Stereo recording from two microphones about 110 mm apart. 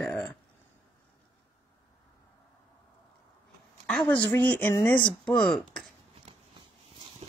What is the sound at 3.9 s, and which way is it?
A woman's voice, 10° left (ahead or behind).